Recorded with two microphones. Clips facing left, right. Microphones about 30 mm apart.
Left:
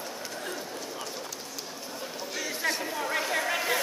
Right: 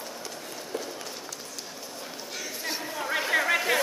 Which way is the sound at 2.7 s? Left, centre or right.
Centre.